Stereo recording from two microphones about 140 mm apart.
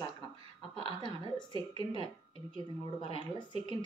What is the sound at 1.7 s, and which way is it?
Speech, 35° left (ahead or behind).